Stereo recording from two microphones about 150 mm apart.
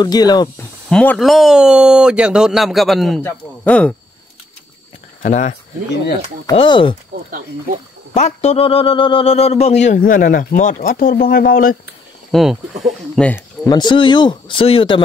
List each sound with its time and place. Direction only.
0.0 s speech: 25° left (ahead or behind)
0.8 s speech: 5° left (ahead or behind)
3.2 s a man's voice: 10° left (ahead or behind)
5.2 s speech: 55° left (ahead or behind)
6.5 s speech: 35° left (ahead or behind)
8.1 s a man's voice: 50° left (ahead or behind)
9.9 s speech: 65° left (ahead or behind)
12.3 s speech: centre (ahead or behind)
13.7 s speech: 30° left (ahead or behind)